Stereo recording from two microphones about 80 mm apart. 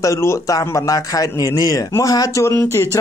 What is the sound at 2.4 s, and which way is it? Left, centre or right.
Speech, left.